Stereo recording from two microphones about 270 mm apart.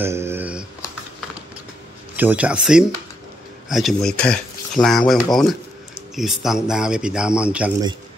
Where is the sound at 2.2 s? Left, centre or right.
Centre.